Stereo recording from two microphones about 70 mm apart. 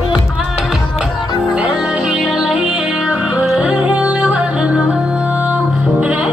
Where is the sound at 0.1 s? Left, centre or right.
Centre.